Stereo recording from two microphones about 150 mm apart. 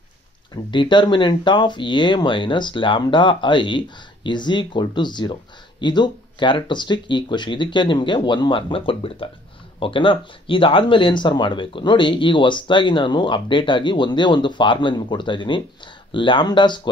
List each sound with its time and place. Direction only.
0.7 s speech: 30° left (ahead or behind)